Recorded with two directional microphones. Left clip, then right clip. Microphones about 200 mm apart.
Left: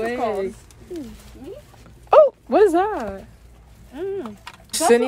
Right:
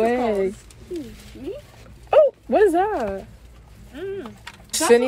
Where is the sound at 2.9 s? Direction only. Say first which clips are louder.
Right 3 dB; 5° left (ahead or behind).